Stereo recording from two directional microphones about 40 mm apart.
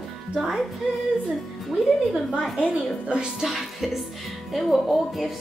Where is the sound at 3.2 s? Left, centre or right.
Centre.